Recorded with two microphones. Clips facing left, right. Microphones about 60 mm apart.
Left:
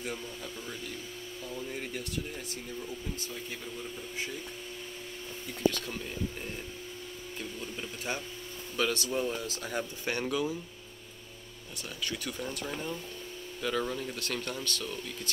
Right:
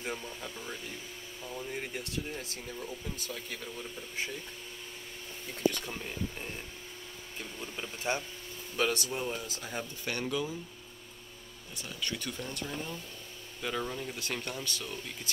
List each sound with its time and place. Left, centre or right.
0.0 s speech: right
5.7 s speech: right
7.6 s speech: right
9.1 s speech: centre
10.0 s speech: centre
12.0 s speech: centre
13.6 s speech: centre